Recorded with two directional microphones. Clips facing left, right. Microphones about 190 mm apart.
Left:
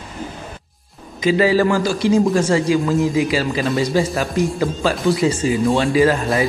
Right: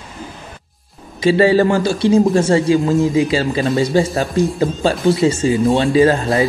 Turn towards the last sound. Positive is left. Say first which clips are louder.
# right 3 dB
turn(degrees=-25)  # may be behind; listen again after turning